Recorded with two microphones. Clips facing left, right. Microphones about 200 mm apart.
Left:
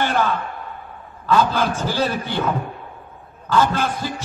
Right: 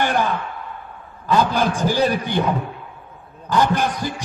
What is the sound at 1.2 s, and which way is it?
Music, 15° right (ahead or behind).